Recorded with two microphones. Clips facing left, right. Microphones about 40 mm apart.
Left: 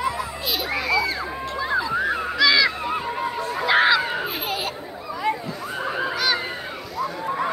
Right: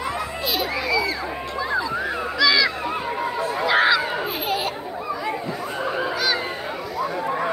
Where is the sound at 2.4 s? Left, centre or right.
Left.